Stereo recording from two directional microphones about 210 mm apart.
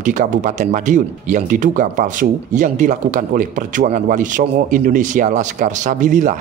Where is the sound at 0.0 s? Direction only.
35° right (ahead or behind).